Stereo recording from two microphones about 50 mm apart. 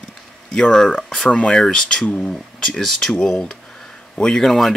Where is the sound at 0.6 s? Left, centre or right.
Centre.